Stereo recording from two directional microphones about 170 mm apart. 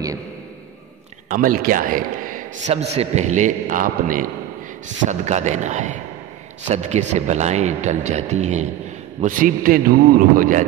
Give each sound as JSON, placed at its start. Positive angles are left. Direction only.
{"t": 1.3, "sound": "a man's voice", "side_deg": -55}
{"t": 9.2, "sound": "a man's voice", "side_deg": -55}